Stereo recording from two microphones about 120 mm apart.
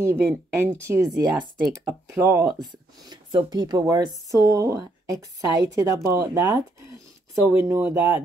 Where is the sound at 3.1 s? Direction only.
35° right (ahead or behind); by 8.2 s 20° right (ahead or behind).